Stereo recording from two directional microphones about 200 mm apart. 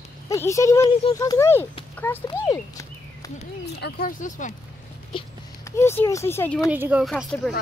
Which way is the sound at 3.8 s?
45° left (ahead or behind).